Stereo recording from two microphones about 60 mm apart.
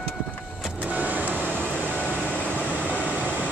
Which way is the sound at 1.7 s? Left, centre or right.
Right.